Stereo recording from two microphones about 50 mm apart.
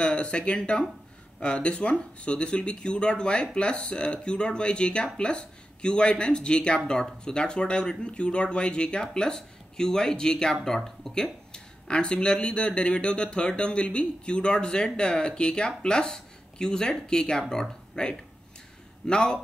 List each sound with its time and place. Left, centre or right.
0.0 s speech: left
11.5 s speech: centre